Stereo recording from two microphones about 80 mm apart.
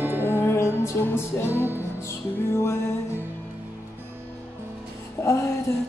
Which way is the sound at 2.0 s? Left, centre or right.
Left.